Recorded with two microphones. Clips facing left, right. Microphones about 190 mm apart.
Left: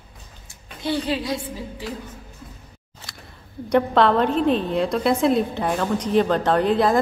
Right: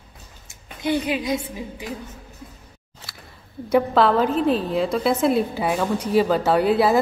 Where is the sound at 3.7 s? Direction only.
Centre (ahead or behind).